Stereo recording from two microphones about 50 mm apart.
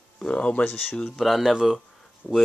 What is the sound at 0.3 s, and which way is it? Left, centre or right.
Speech, left.